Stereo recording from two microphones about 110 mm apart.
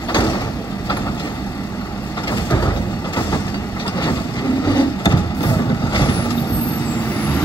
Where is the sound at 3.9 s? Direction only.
35° left (ahead or behind).